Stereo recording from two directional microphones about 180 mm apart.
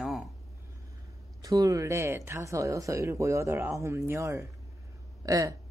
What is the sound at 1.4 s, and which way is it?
Speech, 20° right (ahead or behind).